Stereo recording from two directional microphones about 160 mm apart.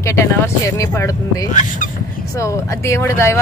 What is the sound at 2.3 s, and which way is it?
Speech, 20° left (ahead or behind).